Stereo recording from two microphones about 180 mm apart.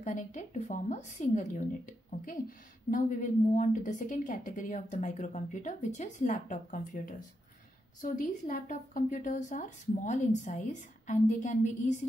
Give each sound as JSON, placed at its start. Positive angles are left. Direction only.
{"t": 0.0, "sound": "a woman's voice", "side_deg": 40}